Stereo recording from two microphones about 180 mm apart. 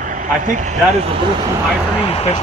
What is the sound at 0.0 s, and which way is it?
Speech, 45° right (ahead or behind).